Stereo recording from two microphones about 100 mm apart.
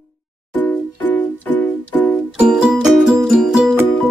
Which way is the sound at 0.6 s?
15° left (ahead or behind).